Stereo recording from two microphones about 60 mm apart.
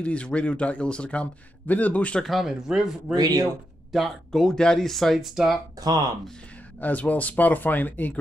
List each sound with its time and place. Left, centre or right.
0.0 s a man's voice: centre
2.2 s speech: centre
3.2 s speech: right
3.9 s speech: centre
6.8 s a man's voice: left